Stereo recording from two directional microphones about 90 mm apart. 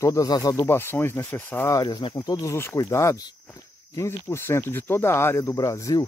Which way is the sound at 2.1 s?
40° left (ahead or behind).